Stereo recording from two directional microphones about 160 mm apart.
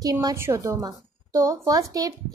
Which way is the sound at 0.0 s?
20° right (ahead or behind).